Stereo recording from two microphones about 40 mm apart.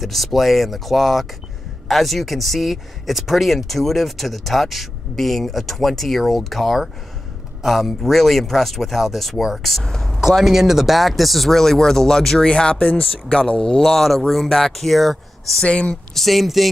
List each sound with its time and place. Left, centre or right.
0.0 s speech: centre
10.2 s speech: centre
12.4 s speech: left
13.6 s speech: centre
14.0 s speech: centre
15.6 s speech: left
16.2 s speech: centre